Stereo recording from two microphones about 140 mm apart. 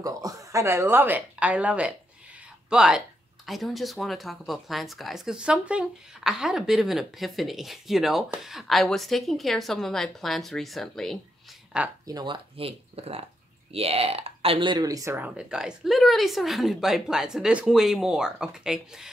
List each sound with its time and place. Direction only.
0.0 s speech: 25° right (ahead or behind); by 11.9 s 5° right (ahead or behind)
12.1 s speech: 30° right (ahead or behind)
12.5 s speech: 45° right (ahead or behind); by 19.0 s 5° right (ahead or behind)